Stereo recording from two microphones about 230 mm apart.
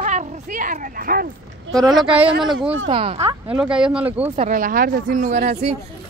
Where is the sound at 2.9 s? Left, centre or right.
Right.